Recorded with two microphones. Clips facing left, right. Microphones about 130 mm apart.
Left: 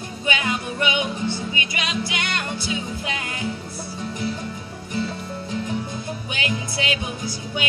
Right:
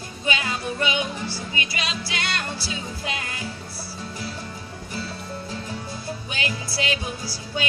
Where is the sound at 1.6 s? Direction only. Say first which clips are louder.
Left 1 dB; 30° right (ahead or behind).